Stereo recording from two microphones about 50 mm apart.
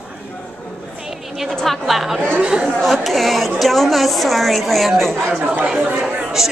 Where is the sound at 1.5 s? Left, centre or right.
Centre.